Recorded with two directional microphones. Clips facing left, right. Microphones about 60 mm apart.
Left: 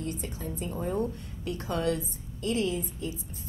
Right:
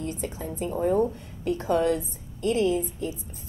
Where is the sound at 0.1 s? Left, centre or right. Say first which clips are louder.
Right 3 dB; centre.